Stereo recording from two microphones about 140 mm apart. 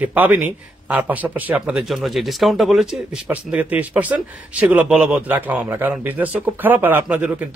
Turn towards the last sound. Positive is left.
turn(degrees=-10)  # may be behind; listen again after turning